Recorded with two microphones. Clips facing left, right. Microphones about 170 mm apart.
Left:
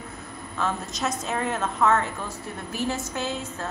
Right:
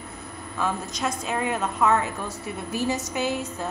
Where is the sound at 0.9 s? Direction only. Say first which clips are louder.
Even; centre (ahead or behind).